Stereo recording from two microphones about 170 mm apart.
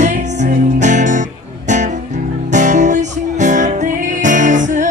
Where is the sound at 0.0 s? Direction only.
45° right (ahead or behind).